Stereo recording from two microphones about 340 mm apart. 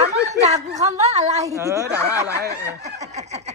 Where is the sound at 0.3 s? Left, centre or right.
Centre.